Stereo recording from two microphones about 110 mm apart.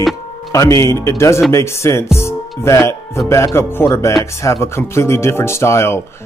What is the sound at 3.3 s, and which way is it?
Speech, 25° left (ahead or behind).